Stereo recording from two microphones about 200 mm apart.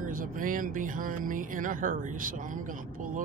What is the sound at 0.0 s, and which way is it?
Speech, 45° right (ahead or behind).